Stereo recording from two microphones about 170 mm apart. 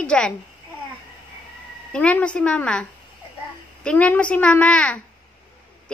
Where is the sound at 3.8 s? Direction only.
10° left (ahead or behind).